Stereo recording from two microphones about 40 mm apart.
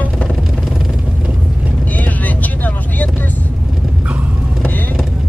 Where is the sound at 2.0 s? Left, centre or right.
Left.